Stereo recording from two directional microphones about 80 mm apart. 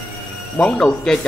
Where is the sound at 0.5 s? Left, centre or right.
Centre.